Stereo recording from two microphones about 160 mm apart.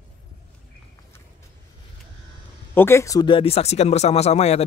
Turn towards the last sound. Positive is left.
turn(degrees=45)  # may be behind; listen again after turning